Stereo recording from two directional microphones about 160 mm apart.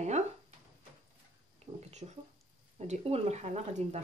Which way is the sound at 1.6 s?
45° right (ahead or behind).